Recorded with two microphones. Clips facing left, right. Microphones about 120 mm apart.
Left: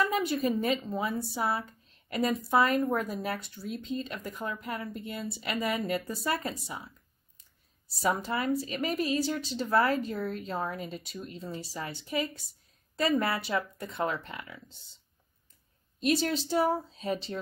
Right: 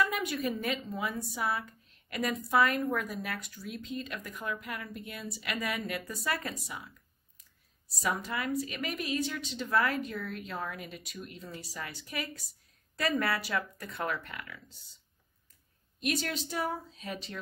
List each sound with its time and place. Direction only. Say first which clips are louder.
0.0 s speech: left 3 dB; 30° left (ahead or behind)
8.0 s a woman's voice: left 4 dB; 30° left (ahead or behind)
16.0 s speech: left 6 dB; 30° left (ahead or behind)